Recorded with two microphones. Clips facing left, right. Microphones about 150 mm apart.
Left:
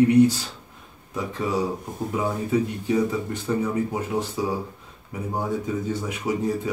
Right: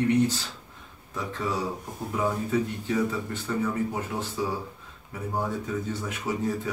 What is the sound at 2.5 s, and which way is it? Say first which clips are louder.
Speech: left 4 dB; 15° left (ahead or behind).